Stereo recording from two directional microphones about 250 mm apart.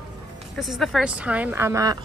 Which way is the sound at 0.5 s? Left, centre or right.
Centre.